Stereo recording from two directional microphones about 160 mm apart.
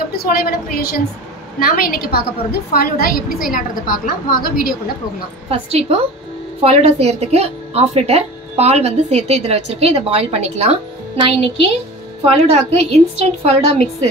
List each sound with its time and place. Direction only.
0.1 s a woman's voice: 70° left (ahead or behind)
5.5 s a woman's voice: 40° right (ahead or behind)